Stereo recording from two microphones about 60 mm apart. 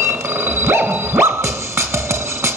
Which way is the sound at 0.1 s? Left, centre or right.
Right.